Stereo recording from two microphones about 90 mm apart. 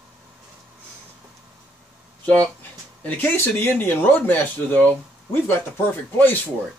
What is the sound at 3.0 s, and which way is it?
Speech, 25° left (ahead or behind).